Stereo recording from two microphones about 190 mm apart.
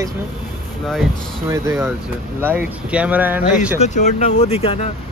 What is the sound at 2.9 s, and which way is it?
Speech, 5° right (ahead or behind).